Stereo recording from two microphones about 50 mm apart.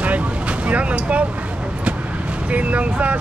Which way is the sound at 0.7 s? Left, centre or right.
Right.